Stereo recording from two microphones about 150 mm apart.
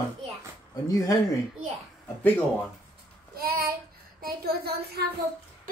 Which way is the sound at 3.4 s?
80° right.